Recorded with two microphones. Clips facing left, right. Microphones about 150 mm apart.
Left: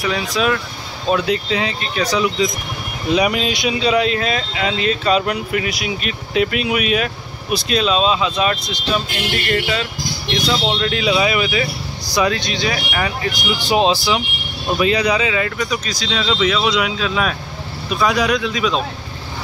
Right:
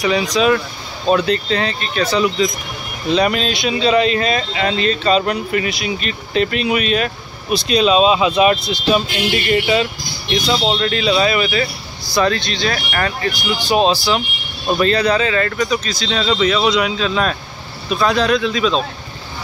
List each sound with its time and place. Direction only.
0.0 s speech: centre (ahead or behind)